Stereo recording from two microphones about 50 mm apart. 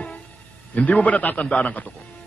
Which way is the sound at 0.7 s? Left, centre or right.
Left.